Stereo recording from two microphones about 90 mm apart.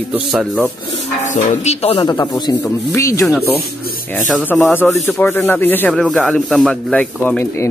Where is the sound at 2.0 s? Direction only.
50° left (ahead or behind).